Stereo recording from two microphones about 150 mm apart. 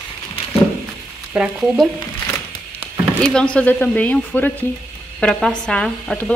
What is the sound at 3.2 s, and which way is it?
Speech, 5° left (ahead or behind).